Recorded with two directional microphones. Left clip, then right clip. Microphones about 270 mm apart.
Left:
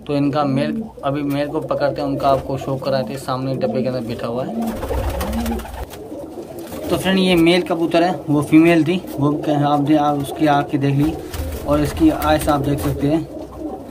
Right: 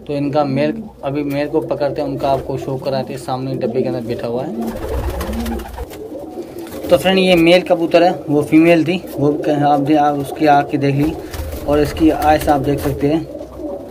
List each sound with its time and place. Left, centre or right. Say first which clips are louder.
0.1 s a man's voice: right 2 dB; centre
6.9 s a man's voice: right 6 dB; centre